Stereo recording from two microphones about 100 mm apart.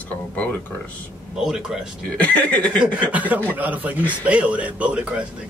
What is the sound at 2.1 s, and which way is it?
Speech, 15° left (ahead or behind).